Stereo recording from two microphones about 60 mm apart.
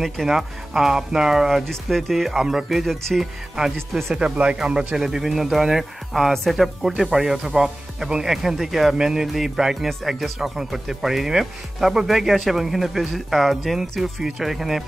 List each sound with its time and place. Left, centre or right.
0.0 s speech: centre
1.6 s speech: centre
3.9 s speech: centre